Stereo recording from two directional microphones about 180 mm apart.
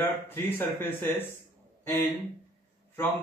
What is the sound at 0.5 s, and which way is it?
Speech, 10° left (ahead or behind).